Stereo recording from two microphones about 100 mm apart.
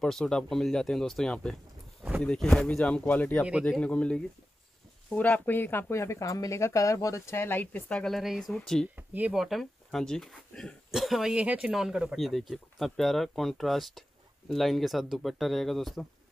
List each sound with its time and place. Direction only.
0.0 s speech: 5° left (ahead or behind)
8.0 s speech: centre (ahead or behind)
8.9 s speech: 15° right (ahead or behind)
9.3 s speech: centre (ahead or behind)